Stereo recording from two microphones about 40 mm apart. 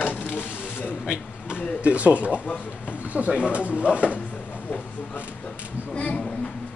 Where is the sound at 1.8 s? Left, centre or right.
Right.